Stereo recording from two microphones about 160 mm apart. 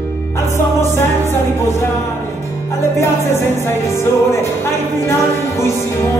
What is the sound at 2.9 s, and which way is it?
Music, 15° left (ahead or behind).